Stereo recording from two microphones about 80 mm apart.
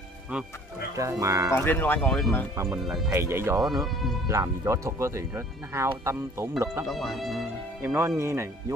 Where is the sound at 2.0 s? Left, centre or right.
Centre.